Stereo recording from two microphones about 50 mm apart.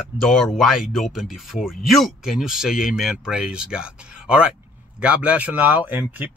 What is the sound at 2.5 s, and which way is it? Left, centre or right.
Speech, centre.